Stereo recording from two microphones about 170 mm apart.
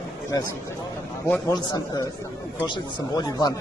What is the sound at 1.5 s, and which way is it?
Speech, 25° left (ahead or behind).